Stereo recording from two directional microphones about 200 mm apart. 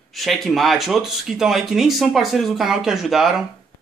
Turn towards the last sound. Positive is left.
turn(degrees=0)  # may be behind; listen again after turning